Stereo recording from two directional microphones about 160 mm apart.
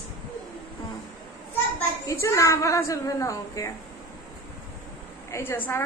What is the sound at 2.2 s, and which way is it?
A woman's voice, 20° left (ahead or behind).